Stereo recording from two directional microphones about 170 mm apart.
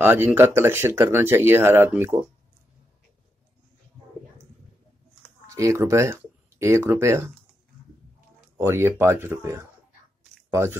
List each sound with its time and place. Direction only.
0.0 s speech: 10° right (ahead or behind)
5.5 s speech: 20° right (ahead or behind)
8.5 s speech: 15° right (ahead or behind)